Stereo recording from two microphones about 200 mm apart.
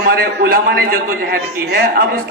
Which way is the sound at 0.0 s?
50° right (ahead or behind).